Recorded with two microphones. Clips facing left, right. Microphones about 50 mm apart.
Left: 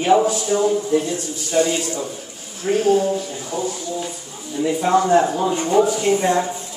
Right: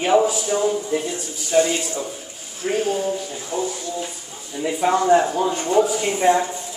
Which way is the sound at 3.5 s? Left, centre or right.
Right.